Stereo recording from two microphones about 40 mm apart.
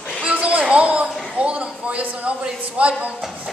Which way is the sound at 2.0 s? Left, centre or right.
Right.